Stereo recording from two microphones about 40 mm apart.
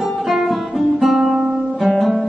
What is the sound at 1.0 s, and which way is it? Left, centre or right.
Guitar, centre.